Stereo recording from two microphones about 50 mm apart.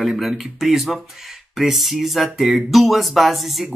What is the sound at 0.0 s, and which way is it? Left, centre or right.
Speech, centre.